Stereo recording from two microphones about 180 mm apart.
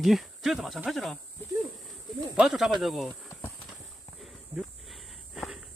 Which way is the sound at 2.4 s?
Centre (ahead or behind).